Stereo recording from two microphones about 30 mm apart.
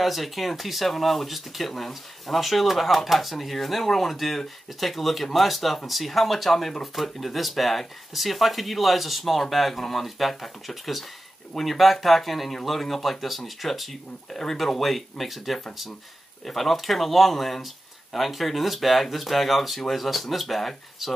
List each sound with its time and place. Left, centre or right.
0.0 s speech: centre
14.3 s speech: centre
14.8 s speech: centre